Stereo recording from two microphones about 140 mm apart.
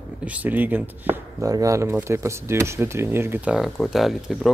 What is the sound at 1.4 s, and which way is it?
Speech, 25° right (ahead or behind).